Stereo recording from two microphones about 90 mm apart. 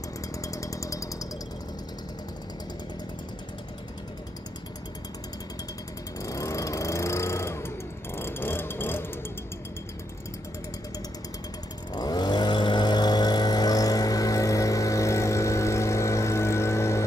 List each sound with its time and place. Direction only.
0.4 s chainsaw: 40° left (ahead or behind)
6.2 s a sound: 40° left (ahead or behind)
11.9 s vehicle: 50° left (ahead or behind); by 17.0 s 30° left (ahead or behind)